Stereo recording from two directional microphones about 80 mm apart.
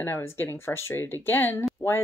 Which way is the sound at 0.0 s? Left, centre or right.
Left.